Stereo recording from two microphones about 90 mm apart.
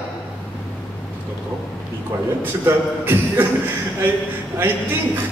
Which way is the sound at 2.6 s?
25° right (ahead or behind).